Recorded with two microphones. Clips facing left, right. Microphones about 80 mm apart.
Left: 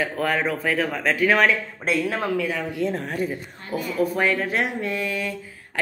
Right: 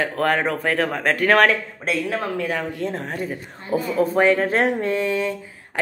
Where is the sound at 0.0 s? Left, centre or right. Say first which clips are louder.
Right 3 dB; right.